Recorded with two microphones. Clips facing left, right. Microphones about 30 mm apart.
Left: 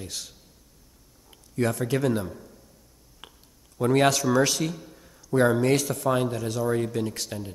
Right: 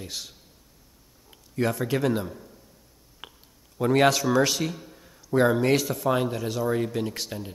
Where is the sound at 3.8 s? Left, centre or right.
Centre.